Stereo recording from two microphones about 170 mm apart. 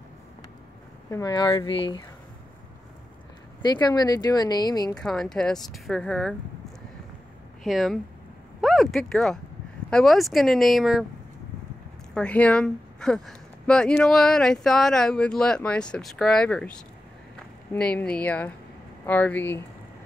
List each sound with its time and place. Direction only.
1.1 s speech: 25° left (ahead or behind)
3.6 s speech: 25° left (ahead or behind)
4.9 s speech: 5° left (ahead or behind)
7.6 s speech: centre (ahead or behind)
12.1 s speech: 5° left (ahead or behind)
17.7 s speech: 5° left (ahead or behind)